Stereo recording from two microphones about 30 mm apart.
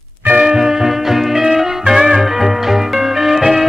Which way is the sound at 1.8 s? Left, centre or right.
Right.